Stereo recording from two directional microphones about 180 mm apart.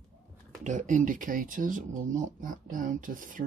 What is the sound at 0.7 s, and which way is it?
Speech, 45° right (ahead or behind).